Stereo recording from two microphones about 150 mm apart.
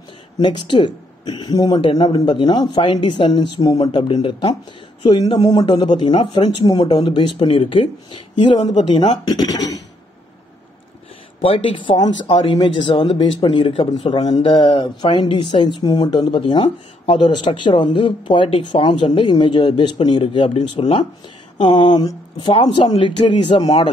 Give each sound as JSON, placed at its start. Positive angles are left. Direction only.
{"t": 0.4, "sound": "speech", "side_deg": 30}
{"t": 11.4, "sound": "speech", "side_deg": 35}
{"t": 21.6, "sound": "speech", "side_deg": 35}